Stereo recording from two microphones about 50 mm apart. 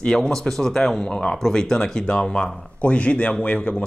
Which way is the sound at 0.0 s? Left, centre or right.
Centre.